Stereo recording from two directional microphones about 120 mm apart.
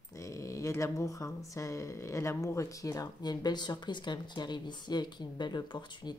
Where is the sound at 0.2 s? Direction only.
25° left (ahead or behind).